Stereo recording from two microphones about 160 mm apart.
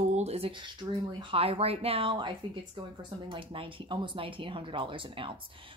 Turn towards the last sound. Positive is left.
turn(degrees=-35)  # may be behind; listen again after turning